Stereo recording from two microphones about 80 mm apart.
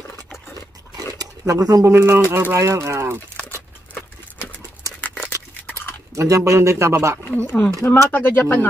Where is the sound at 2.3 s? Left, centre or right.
Right.